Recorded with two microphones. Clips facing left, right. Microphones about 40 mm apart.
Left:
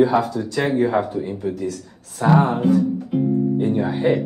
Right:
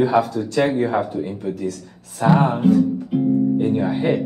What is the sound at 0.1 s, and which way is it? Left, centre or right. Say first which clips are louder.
Speech: right 2 dB; centre.